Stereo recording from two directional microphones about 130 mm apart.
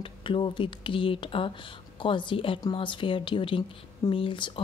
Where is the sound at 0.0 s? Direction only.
40° left (ahead or behind).